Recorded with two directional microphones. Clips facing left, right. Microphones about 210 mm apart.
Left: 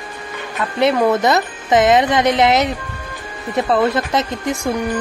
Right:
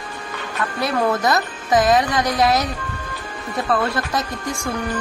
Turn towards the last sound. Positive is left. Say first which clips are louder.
# left 5 dB
turn(degrees=20)  # may be behind; listen again after turning